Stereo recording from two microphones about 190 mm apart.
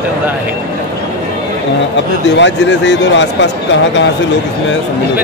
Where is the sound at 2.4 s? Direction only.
70° left (ahead or behind).